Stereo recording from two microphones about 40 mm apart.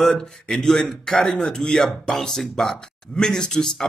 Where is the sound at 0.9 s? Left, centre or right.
Centre.